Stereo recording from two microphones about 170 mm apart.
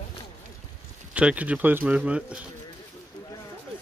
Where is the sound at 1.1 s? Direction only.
10° right (ahead or behind).